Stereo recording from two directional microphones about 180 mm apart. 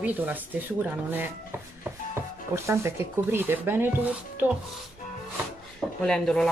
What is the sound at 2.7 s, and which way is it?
Speech, 15° right (ahead or behind).